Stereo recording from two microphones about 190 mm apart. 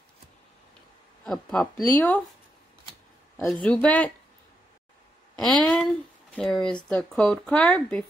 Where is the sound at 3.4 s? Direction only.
5° left (ahead or behind).